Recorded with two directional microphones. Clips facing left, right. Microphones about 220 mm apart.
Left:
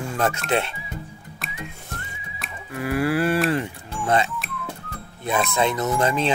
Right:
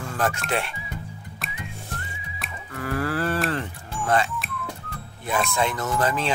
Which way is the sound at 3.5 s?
15° left (ahead or behind).